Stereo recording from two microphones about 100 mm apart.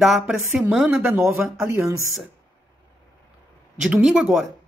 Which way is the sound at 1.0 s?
15° right (ahead or behind).